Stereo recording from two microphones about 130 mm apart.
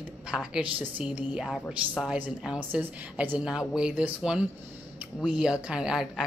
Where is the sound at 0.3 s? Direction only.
5° right (ahead or behind).